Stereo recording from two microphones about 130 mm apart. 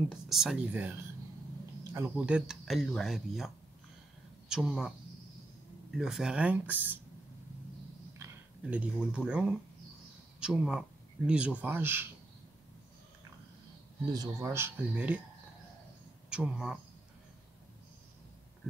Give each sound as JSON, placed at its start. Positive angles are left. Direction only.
{"t": 0.1, "sound": "speech", "side_deg": -5}
{"t": 5.9, "sound": "speech", "side_deg": -5}
{"t": 8.6, "sound": "speech", "side_deg": -10}
{"t": 14.1, "sound": "speech", "side_deg": -25}
{"t": 16.3, "sound": "speech", "side_deg": -5}